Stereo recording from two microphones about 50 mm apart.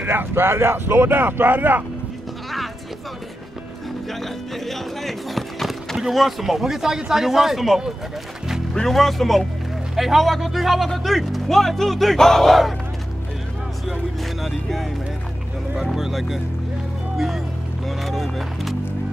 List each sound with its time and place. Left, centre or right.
0.0 s speech: right
4.1 s speech: centre
14.4 s speech: centre
17.8 s speech: centre